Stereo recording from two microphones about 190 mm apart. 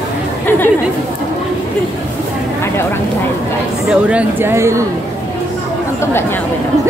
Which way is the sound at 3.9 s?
5° right (ahead or behind).